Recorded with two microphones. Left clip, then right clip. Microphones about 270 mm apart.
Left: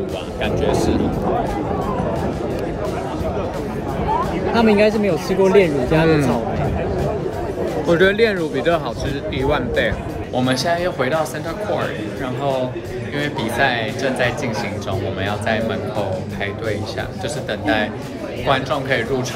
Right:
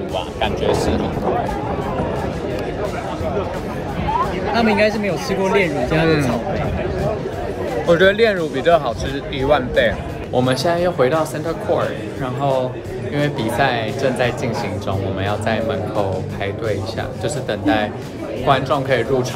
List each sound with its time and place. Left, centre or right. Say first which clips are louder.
0.4 s speech: right 1 dB; centre
4.6 s speech: left 2 dB; centre
7.9 s speech: right 2 dB; centre
10.3 s speech: right 2 dB; centre
13.2 s speech: right 1 dB; centre
17.5 s speech: right 1 dB; centre